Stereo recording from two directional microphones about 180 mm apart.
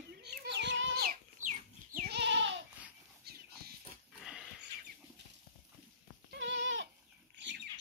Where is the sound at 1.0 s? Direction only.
50° right (ahead or behind).